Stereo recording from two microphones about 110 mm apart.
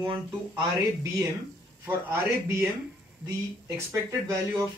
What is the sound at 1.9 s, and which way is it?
Speech, 20° right (ahead or behind).